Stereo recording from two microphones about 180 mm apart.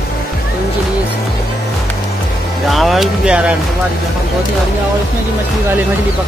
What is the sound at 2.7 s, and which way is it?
Speech, centre (ahead or behind).